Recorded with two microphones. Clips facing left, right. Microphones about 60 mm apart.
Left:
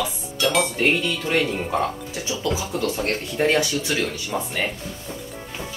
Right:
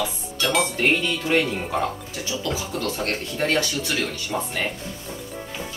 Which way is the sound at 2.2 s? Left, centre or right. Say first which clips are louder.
Left 2 dB; left.